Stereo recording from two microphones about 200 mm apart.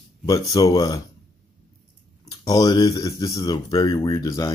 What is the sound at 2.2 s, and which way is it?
Speech, 20° left (ahead or behind).